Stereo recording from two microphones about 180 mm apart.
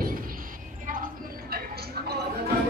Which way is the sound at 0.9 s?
50° right (ahead or behind).